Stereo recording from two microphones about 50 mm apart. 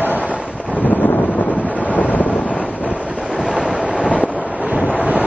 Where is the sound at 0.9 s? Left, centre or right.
Left.